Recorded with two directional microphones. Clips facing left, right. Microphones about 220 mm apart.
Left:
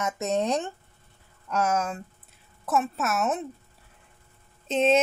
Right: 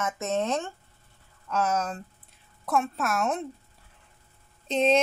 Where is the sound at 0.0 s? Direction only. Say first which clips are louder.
Left 2 dB; 15° left (ahead or behind).